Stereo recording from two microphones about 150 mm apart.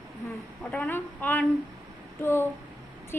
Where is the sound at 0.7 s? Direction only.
10° left (ahead or behind).